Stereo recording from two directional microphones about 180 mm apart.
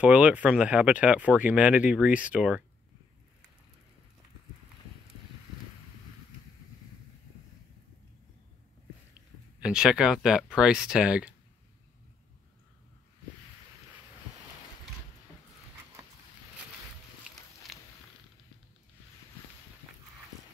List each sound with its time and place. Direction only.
0.0 s speech: 5° right (ahead or behind)
9.6 s speech: 5° right (ahead or behind)